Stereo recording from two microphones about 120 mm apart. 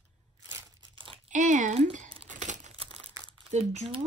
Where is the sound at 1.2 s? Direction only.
90° right.